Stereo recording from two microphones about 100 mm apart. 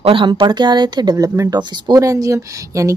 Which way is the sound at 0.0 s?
55° right (ahead or behind).